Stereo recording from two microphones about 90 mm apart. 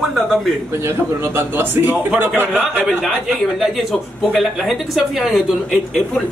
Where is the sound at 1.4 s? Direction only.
20° right (ahead or behind).